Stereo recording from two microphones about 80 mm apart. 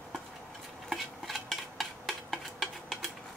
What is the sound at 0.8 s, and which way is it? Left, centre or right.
Dishes, centre.